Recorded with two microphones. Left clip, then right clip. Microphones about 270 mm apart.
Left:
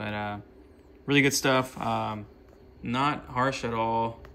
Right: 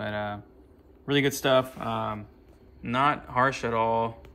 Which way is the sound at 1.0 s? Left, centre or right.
Centre.